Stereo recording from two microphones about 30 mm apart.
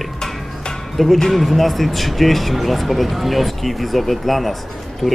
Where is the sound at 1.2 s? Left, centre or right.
Centre.